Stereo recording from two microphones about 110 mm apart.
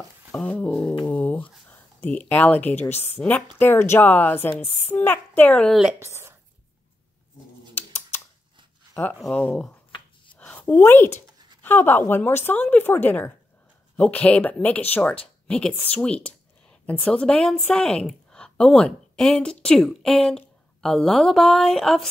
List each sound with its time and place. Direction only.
0.3 s a sound: 10° left (ahead or behind)
1.7 s a woman's voice: 15° left (ahead or behind)
5.7 s speech: 5° right (ahead or behind)
5.9 s speech: 25° right (ahead or behind)
7.7 s scissors: 20° left (ahead or behind)
9.3 s a woman's voice: 10° left (ahead or behind)
10.3 s a sound: 15° left (ahead or behind)
11.6 s a woman's voice: 20° left (ahead or behind); by 22.1 s 5° left (ahead or behind)